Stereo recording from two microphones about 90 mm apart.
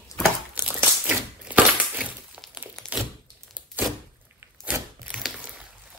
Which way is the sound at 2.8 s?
10° left (ahead or behind).